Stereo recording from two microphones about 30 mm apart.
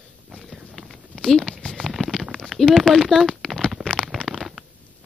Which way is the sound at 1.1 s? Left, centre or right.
Left.